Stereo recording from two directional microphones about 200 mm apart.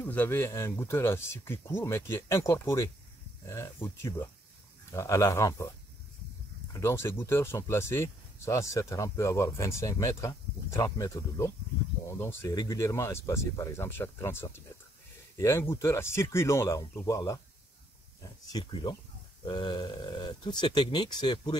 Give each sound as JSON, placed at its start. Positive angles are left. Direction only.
{"t": 0.0, "sound": "speech", "side_deg": 10}
{"t": 6.7, "sound": "speech", "side_deg": 15}